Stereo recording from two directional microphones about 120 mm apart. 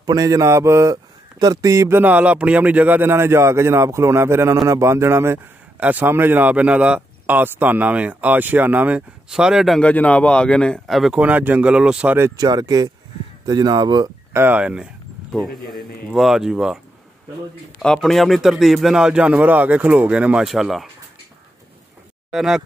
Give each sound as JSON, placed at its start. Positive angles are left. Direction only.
{"t": 0.0, "sound": "speech", "side_deg": -30}
{"t": 9.8, "sound": "speech", "side_deg": 10}
{"t": 11.1, "sound": "speech", "side_deg": -15}
{"t": 12.4, "sound": "speech", "side_deg": -30}
{"t": 14.3, "sound": "a man's voice", "side_deg": -15}
{"t": 17.8, "sound": "a man's voice", "side_deg": 5}
{"t": 22.3, "sound": "speech", "side_deg": -5}